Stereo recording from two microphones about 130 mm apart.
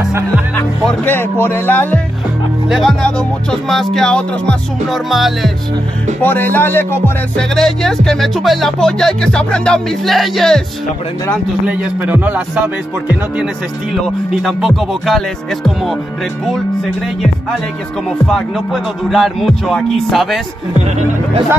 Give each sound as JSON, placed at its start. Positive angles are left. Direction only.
{"t": 1.0, "sound": "speech", "side_deg": 15}
{"t": 2.7, "sound": "speech", "side_deg": 0}
{"t": 6.2, "sound": "speech", "side_deg": 15}
{"t": 7.3, "sound": "speech", "side_deg": 5}
{"t": 11.6, "sound": "speech", "side_deg": -10}
{"t": 14.0, "sound": "speech", "side_deg": 0}
{"t": 18.2, "sound": "speech", "side_deg": 0}